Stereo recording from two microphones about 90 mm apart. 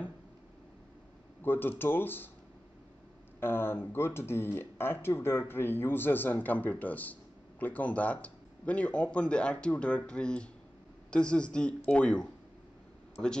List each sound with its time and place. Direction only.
1.4 s speech: 25° left (ahead or behind)
3.3 s speech: 25° left (ahead or behind)